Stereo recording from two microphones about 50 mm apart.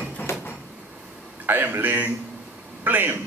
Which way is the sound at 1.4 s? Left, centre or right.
Right.